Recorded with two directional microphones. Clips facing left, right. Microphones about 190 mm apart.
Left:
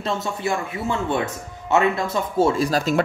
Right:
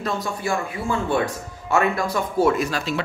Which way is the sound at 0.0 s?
25° left (ahead or behind).